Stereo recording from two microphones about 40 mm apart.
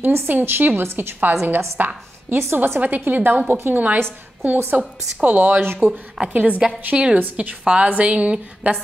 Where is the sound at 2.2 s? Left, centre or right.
Right.